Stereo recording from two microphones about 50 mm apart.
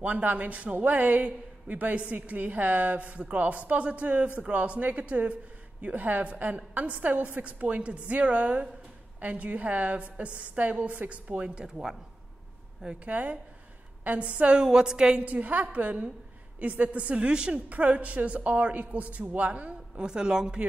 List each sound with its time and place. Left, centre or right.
0.0 s a woman's voice: right
11.6 s speech: centre
13.0 s a woman's voice: right
15.2 s a woman's voice: right
17.6 s a woman's voice: right
20.1 s speech: centre